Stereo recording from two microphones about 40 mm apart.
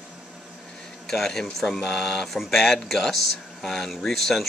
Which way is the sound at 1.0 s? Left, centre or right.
Centre.